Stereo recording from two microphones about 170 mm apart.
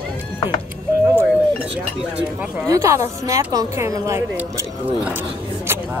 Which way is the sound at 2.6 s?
20° right (ahead or behind).